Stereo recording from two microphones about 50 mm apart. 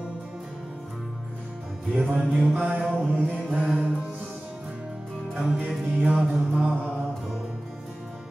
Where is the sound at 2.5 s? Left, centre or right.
Right.